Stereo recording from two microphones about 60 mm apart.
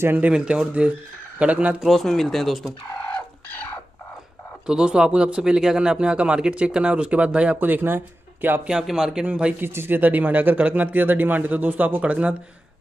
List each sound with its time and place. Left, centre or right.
0.3 s speech: centre
1.8 s speech: centre
3.1 s a sound: left
4.6 s speech: centre
7.6 s speech: right
8.8 s speech: centre
9.6 s speech: right